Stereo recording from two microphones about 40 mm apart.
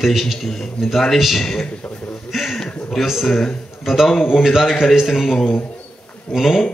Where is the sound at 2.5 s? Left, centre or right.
Centre.